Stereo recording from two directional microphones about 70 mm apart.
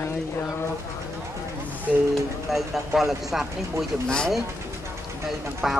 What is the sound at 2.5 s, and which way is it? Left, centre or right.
Speech, centre.